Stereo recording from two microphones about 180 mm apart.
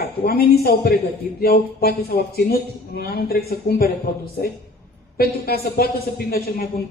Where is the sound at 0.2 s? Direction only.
60° left (ahead or behind).